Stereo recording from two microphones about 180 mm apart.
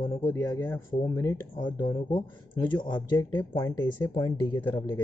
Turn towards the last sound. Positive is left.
turn(degrees=10)  # may be behind; listen again after turning